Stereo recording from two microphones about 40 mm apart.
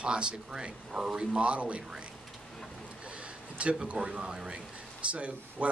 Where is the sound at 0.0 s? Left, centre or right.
Right.